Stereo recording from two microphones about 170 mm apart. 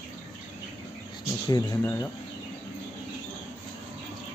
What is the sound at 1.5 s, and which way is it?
Speech, 15° left (ahead or behind).